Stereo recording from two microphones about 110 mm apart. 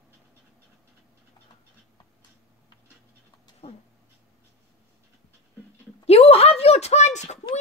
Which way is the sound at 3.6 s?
55° left (ahead or behind).